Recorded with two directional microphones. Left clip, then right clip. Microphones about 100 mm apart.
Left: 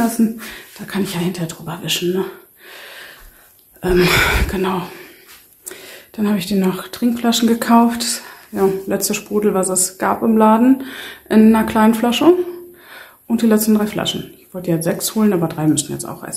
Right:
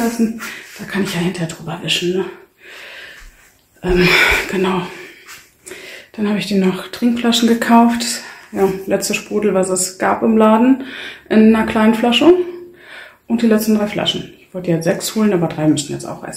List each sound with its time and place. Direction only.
0.8 s speech: 20° left (ahead or behind)
2.8 s gasp: 35° left (ahead or behind)
3.8 s speech: 45° left (ahead or behind)
4.1 s speech: 20° left (ahead or behind)
5.7 s speech: 25° left (ahead or behind)
14.6 s speech: 20° left (ahead or behind)
15.6 s speech: 30° left (ahead or behind)